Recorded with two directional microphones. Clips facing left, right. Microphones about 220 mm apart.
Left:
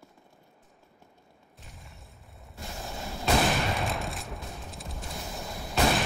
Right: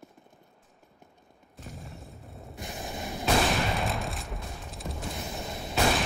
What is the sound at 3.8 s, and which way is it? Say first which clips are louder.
Fusillade: right 1 dB; centre (ahead or behind).